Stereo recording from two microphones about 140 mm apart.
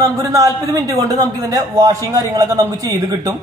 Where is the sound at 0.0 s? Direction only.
25° right (ahead or behind).